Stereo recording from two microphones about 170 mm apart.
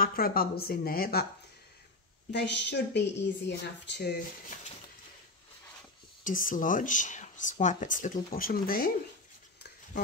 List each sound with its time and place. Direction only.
0.0 s speech: 60° left (ahead or behind)
2.3 s speech: 90° left
4.5 s a sound: 45° left (ahead or behind)
6.2 s speech: 50° left (ahead or behind)